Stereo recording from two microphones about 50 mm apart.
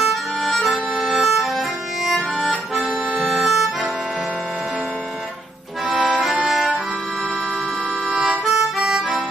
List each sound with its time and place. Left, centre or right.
0.0 s accordion: centre
1.0 s music: centre
3.3 s accordion: centre
6.0 s accordion: centre
8.1 s harmonica: right
8.5 s harmonica: centre